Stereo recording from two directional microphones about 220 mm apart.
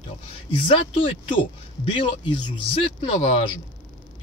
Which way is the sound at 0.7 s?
25° left (ahead or behind).